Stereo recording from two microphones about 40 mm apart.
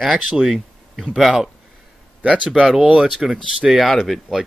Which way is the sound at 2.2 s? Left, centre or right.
Right.